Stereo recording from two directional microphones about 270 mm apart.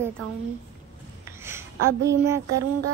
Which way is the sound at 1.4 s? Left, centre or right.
Centre.